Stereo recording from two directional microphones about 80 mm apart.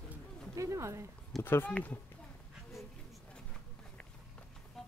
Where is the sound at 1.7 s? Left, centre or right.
Centre.